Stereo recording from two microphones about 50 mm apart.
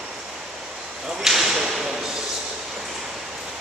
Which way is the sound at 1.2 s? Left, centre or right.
Centre.